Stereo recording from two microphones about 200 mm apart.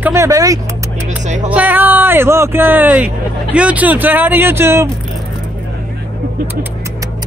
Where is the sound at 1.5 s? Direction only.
10° right (ahead or behind).